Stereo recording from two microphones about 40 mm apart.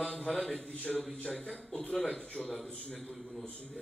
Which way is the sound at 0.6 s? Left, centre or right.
Left.